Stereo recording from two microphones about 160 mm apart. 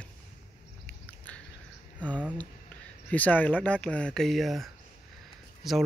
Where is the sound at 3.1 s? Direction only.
10° left (ahead or behind).